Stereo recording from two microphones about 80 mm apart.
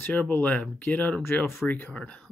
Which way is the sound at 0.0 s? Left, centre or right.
Centre.